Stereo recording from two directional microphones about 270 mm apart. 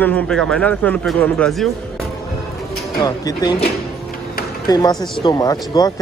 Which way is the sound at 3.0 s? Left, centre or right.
Centre.